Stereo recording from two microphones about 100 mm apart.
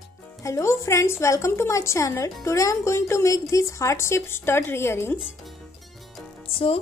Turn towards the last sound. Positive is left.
turn(degrees=70)  # may be behind; listen again after turning